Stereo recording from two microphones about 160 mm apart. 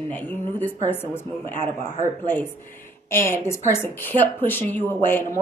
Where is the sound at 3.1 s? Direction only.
15° left (ahead or behind).